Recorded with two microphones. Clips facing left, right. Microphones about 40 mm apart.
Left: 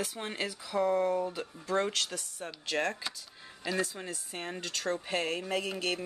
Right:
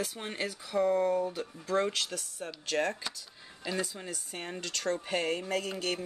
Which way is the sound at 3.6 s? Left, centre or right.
Centre.